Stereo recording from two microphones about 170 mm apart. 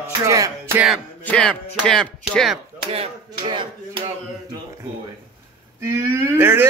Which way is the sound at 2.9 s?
30° right (ahead or behind).